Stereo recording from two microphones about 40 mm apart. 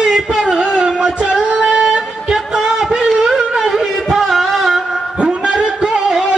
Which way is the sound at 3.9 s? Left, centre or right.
Centre.